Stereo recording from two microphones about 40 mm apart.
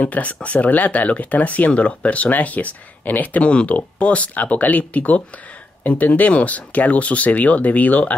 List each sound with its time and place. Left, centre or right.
0.0 s speech: left